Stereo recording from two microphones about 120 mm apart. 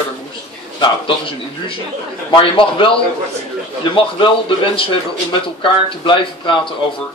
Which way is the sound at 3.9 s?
45° left (ahead or behind).